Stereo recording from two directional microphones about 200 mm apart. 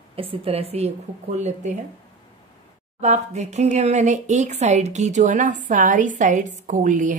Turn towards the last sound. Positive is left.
turn(degrees=-40)  # may be behind; listen again after turning